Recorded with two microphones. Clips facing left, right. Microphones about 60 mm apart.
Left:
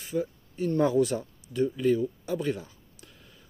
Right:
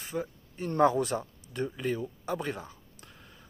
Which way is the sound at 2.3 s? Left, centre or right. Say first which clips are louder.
Left 5 dB; right.